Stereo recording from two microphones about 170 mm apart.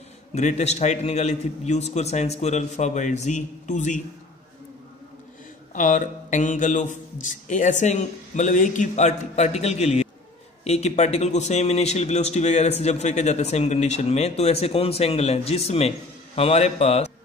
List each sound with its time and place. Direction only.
0.3 s a man's voice: 40° left (ahead or behind)
5.8 s a man's voice: 45° left (ahead or behind)